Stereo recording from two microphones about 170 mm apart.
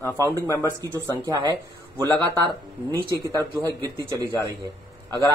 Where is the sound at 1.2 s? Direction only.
20° right (ahead or behind).